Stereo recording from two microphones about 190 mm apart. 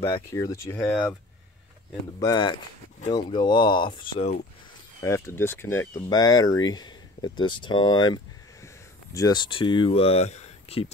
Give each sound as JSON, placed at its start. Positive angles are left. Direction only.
{"t": 0.0, "sound": "speech", "side_deg": 15}
{"t": 2.1, "sound": "speech", "side_deg": 20}
{"t": 5.0, "sound": "speech", "side_deg": 15}